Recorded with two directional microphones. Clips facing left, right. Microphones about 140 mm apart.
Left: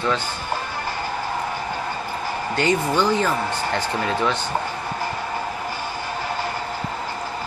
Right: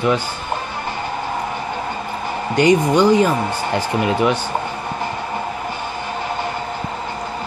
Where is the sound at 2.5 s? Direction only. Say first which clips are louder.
Right 7 dB; 15° right (ahead or behind).